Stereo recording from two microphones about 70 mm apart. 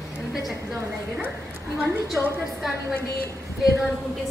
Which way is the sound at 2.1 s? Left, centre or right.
Centre.